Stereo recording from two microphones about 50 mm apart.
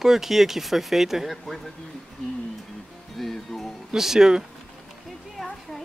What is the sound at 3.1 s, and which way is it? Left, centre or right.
Speech, centre.